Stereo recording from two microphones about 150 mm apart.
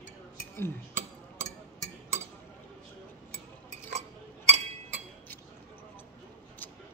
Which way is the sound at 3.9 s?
45° right (ahead or behind).